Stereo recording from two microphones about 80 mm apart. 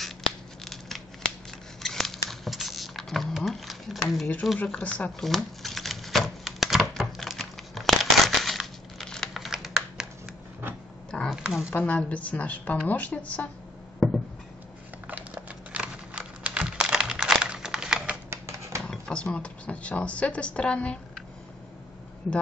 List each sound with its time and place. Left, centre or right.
0.7 s tearing: centre
1.8 s patter: centre
4.6 s speech: centre
5.2 s typewriter: centre
11.1 s a sound: centre
11.3 s speech: centre
11.7 s a woman's voice: centre
13.9 s a sound: centre
15.0 s a sound: centre
18.9 s speech: centre